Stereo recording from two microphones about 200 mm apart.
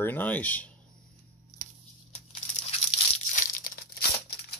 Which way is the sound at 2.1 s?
35° left (ahead or behind).